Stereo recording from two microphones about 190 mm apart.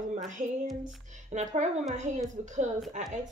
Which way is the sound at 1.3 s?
40° right (ahead or behind).